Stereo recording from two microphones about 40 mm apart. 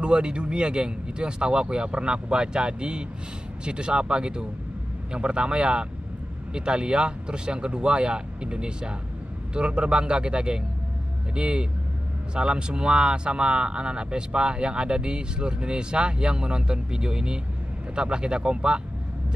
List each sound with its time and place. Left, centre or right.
0.0 s speech: right